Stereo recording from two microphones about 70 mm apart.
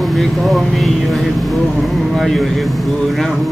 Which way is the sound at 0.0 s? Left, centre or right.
Centre.